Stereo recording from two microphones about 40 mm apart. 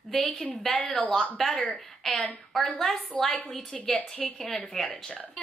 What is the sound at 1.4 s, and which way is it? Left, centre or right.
A woman's voice, centre.